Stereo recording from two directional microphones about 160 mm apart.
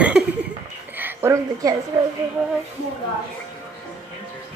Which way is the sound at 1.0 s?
15° right (ahead or behind).